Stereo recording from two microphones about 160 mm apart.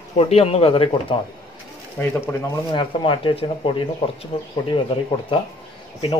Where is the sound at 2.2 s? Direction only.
15° left (ahead or behind).